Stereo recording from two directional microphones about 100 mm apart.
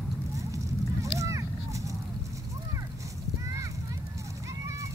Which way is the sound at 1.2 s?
30° right (ahead or behind).